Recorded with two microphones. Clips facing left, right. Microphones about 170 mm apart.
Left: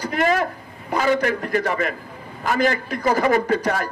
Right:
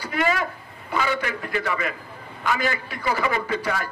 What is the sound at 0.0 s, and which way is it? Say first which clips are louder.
A man's voice: left 4 dB; 45° left (ahead or behind).